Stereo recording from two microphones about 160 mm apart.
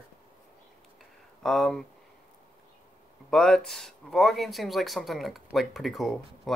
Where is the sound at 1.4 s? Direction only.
Centre (ahead or behind).